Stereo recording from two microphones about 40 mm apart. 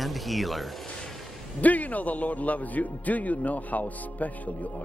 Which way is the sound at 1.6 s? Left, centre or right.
Left.